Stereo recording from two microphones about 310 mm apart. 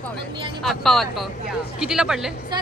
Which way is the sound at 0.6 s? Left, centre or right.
Centre.